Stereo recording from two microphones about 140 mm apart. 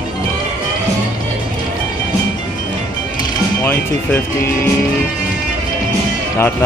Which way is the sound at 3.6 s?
15° left (ahead or behind).